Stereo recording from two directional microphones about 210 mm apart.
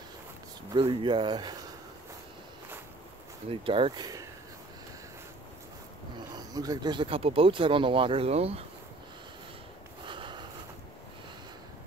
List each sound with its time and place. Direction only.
0.7 s speech: 25° right (ahead or behind)
3.4 s speech: 25° right (ahead or behind)
6.3 s speech: 20° right (ahead or behind)
10.0 s snort: 25° right (ahead or behind)